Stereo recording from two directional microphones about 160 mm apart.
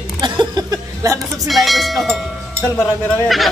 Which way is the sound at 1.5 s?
Centre (ahead or behind).